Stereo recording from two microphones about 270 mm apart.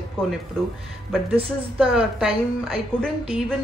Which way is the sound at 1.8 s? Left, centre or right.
Centre.